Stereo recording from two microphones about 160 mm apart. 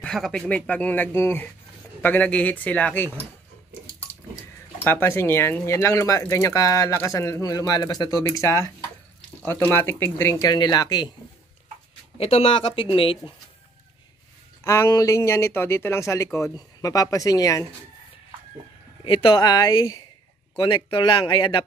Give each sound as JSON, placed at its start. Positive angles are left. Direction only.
{"t": 0.0, "sound": "speech", "side_deg": 5}
{"t": 4.8, "sound": "speech", "side_deg": 15}
{"t": 12.2, "sound": "speech", "side_deg": 40}
{"t": 14.6, "sound": "speech", "side_deg": 15}
{"t": 19.0, "sound": "speech", "side_deg": 30}